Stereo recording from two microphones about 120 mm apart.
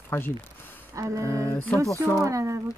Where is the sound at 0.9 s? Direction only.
25° right (ahead or behind).